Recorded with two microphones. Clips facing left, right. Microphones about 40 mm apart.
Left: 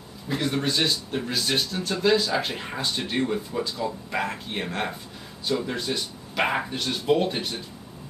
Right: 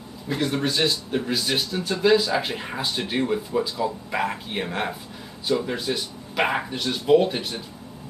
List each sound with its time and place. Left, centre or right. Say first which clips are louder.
0.3 s speech: right 1 dB; centre